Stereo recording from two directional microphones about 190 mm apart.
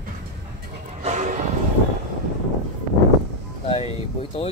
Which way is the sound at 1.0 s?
35° right (ahead or behind).